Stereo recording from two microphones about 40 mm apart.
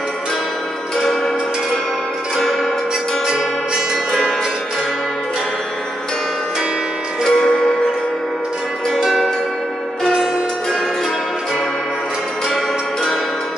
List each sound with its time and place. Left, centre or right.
7.2 s music: left
9.0 s music: centre